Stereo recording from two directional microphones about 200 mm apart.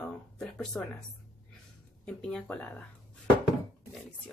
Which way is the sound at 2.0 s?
5° left (ahead or behind).